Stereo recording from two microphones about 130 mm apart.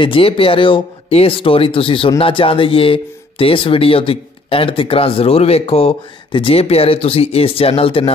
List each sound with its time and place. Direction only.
0.0 s speech: 45° left (ahead or behind)